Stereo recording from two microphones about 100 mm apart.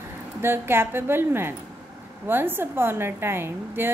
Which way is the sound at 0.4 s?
20° right (ahead or behind).